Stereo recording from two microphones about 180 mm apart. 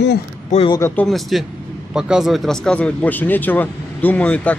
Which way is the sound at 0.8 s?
10° left (ahead or behind).